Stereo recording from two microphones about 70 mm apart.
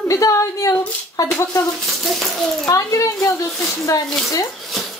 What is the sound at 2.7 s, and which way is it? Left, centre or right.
Speech, left.